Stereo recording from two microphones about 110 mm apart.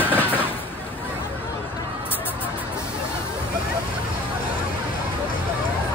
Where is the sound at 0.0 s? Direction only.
15° left (ahead or behind).